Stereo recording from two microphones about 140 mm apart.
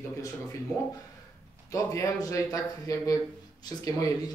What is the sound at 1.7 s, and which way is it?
Speech, 25° left (ahead or behind).